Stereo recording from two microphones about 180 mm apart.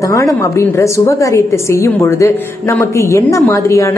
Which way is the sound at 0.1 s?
15° left (ahead or behind).